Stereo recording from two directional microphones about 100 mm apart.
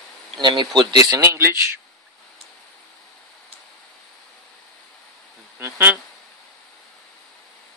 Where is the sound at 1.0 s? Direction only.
25° right (ahead or behind).